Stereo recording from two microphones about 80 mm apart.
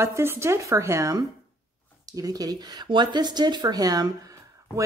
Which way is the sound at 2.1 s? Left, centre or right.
Right.